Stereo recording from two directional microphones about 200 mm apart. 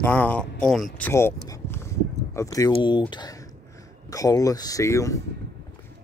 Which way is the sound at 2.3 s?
15° left (ahead or behind).